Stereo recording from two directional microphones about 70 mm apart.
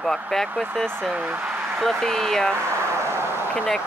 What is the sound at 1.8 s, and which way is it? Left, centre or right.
Speech, centre.